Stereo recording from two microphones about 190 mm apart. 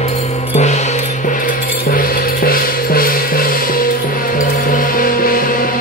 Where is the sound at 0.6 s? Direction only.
35° left (ahead or behind).